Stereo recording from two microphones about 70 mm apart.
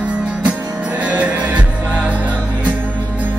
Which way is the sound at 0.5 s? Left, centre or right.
Centre.